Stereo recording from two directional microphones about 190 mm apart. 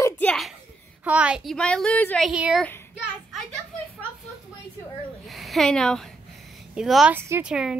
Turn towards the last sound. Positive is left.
turn(degrees=-5)  # may be behind; listen again after turning